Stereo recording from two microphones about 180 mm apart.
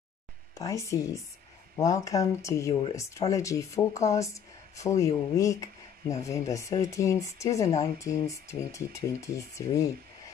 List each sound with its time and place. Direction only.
0.6 s speech: 20° left (ahead or behind)